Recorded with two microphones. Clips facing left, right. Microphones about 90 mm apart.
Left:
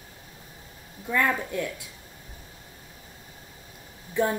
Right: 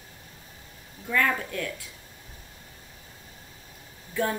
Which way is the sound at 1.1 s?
20° left (ahead or behind).